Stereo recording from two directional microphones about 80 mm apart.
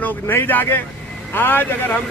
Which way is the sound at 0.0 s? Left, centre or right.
Left.